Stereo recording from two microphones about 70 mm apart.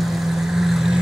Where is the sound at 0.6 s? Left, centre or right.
Centre.